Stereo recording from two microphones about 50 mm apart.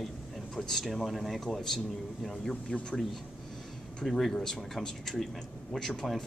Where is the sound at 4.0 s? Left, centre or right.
Centre.